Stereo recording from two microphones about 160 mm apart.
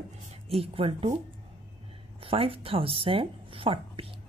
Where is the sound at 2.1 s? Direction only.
35° right (ahead or behind).